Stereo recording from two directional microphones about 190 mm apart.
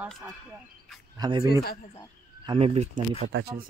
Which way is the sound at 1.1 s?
20° right (ahead or behind).